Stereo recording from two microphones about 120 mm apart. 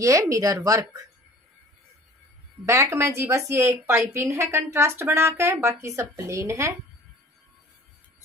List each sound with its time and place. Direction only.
0.0 s speech: 25° right (ahead or behind)
2.6 s speech: 25° right (ahead or behind)